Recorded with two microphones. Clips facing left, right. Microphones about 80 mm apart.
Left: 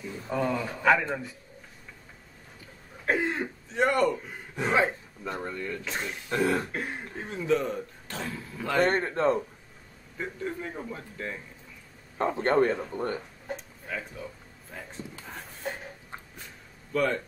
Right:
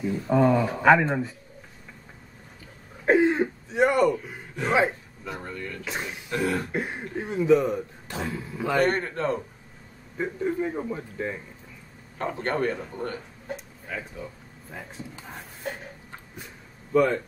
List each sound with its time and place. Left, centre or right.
0.0 s speech: right
3.1 s cough: right
3.8 s a man's voice: centre
5.4 s a man's voice: left
5.9 s speech: centre
6.3 s a man's voice: left
6.7 s speech: centre
8.8 s a man's voice: left
10.2 s speech: centre
12.4 s a man's voice: left
13.8 s speech: centre
16.9 s speech: centre